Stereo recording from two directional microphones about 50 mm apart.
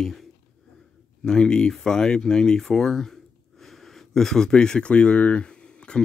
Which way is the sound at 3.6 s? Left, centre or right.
Centre.